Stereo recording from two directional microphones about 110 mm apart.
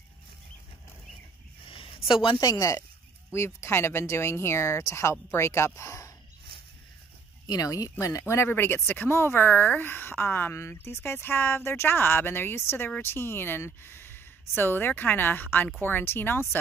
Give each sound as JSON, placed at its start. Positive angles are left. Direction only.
{"t": 1.7, "sound": "a sound", "side_deg": 55}
{"t": 2.4, "sound": "speech", "side_deg": 30}
{"t": 7.4, "sound": "speech", "side_deg": 35}